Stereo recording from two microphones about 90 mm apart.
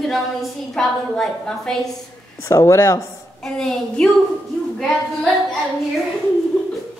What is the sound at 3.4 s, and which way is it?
A woman's voice, 5° left (ahead or behind).